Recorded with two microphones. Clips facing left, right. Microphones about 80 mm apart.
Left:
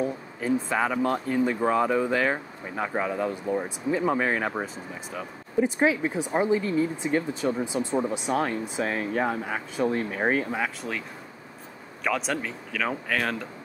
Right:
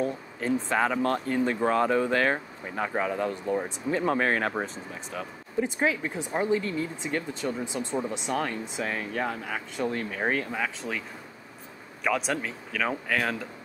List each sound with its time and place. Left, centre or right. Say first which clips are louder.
0.0 s speech: left 1 dB; centre
10.8 s speech: left 1 dB; centre